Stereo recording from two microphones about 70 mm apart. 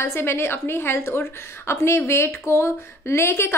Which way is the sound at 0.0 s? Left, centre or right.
Left.